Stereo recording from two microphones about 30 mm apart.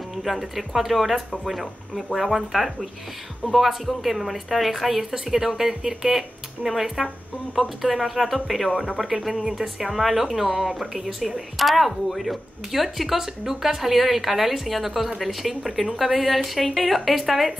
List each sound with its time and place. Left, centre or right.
0.1 s speech: centre
8.7 s speech: centre